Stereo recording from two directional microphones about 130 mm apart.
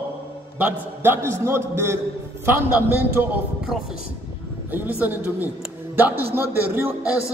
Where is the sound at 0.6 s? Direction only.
15° right (ahead or behind).